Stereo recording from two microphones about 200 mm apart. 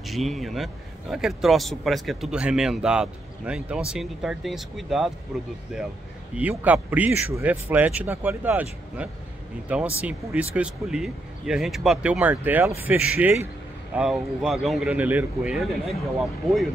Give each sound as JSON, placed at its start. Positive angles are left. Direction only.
{"t": 0.0, "sound": "speech", "side_deg": 0}